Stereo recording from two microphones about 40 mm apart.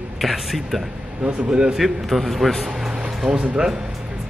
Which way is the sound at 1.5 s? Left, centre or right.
Right.